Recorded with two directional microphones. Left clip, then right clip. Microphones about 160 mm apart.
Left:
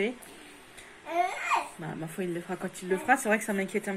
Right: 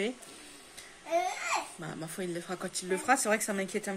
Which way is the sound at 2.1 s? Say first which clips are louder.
Left 3 dB; 5° right (ahead or behind).